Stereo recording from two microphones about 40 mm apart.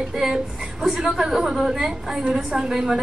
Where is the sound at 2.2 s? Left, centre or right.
Right.